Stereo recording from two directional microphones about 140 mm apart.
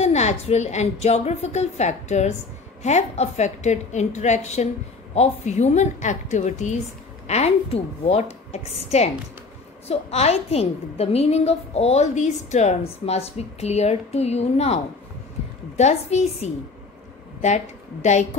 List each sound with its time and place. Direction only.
0.0 s a woman's voice: 55° left (ahead or behind)